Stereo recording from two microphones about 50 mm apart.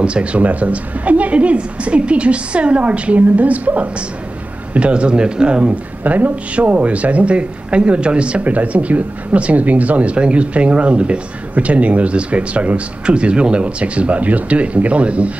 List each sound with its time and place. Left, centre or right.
0.0 s speech: right